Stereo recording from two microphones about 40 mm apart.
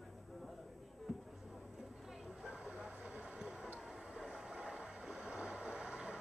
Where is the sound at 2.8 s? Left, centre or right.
Right.